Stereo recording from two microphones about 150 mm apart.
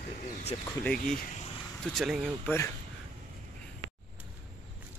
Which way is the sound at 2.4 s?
15° left (ahead or behind).